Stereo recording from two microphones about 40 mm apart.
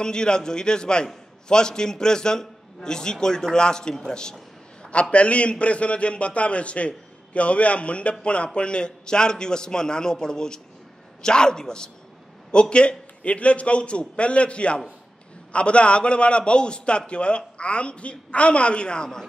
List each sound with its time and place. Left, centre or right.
0.0 s a man's voice: centre
5.1 s a man's voice: left